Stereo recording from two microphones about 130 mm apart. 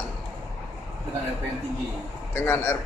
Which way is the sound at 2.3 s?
15° left (ahead or behind).